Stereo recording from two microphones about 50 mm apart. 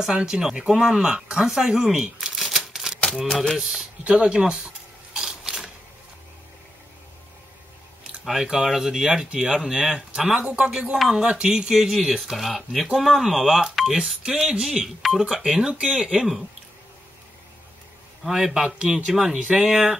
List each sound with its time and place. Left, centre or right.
0.0 s speech: centre
3.3 s speech: centre
3.5 s speech: centre
4.0 s camera: right
8.3 s speech: centre
9.7 s speech: right
11.0 s speech: centre
15.0 s speech: centre
15.5 s speech: centre
18.4 s speech: centre